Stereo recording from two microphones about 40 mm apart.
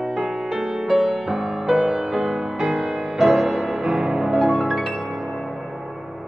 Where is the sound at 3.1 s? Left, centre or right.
Centre.